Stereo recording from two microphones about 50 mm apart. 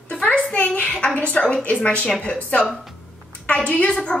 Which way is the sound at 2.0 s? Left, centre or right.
Centre.